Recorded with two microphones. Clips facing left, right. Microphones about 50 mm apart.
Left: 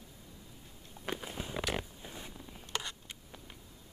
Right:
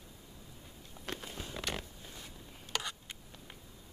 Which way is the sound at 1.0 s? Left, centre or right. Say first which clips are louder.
Left 3 dB; centre.